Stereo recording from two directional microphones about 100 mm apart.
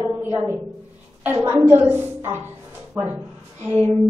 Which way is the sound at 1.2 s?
20° right (ahead or behind).